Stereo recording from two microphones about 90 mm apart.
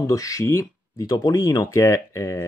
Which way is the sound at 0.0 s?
40° left (ahead or behind).